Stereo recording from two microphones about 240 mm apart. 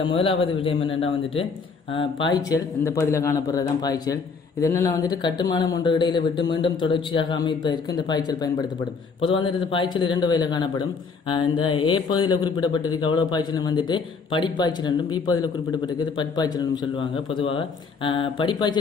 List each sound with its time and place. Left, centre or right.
0.0 s a man's voice: left
9.7 s a man's voice: left